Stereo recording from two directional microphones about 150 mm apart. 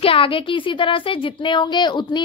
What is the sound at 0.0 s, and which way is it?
A woman's voice, 35° left (ahead or behind).